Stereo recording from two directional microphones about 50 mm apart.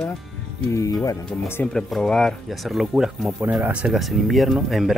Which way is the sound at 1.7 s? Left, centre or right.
Centre.